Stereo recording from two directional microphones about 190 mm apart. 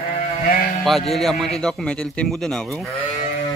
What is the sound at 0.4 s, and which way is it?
Speech, 50° left (ahead or behind).